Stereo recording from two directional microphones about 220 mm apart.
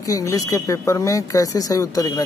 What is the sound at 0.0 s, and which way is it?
Speech, 15° left (ahead or behind).